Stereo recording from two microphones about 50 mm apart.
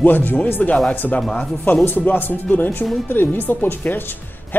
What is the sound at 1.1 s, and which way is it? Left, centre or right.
Speech, centre.